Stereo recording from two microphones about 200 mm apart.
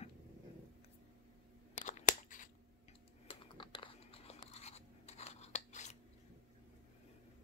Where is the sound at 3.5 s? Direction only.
25° left (ahead or behind).